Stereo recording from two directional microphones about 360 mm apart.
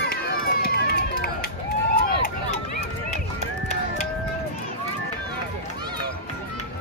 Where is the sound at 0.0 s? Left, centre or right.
Left.